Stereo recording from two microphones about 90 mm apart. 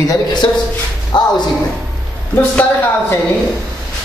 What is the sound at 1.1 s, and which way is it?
Speech, 50° left (ahead or behind).